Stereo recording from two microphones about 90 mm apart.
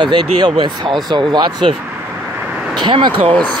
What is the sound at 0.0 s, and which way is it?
Speech, 60° right (ahead or behind).